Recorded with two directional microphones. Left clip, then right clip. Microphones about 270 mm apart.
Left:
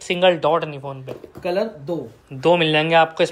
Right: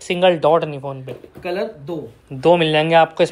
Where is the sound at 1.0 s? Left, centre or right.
Left.